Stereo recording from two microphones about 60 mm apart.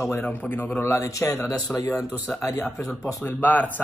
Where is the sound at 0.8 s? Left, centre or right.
Left.